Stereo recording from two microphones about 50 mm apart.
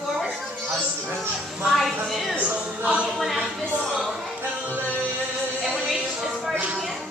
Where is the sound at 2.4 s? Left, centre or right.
Right.